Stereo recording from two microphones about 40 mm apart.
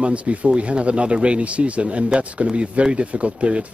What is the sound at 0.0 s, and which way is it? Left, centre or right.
Speech, right.